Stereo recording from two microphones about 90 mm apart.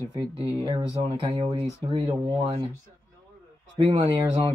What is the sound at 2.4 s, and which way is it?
Speech, 90° right.